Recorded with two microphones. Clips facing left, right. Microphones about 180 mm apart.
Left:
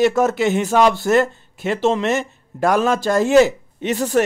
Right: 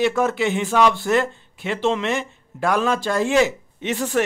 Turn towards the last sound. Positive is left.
turn(degrees=40)  # may be behind; listen again after turning